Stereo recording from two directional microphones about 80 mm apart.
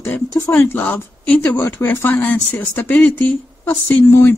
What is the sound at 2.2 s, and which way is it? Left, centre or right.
Speech, left.